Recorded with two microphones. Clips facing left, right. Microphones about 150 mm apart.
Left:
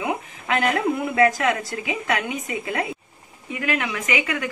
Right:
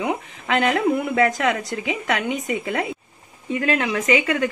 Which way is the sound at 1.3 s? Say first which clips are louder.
Right 1 dB; 20° right (ahead or behind).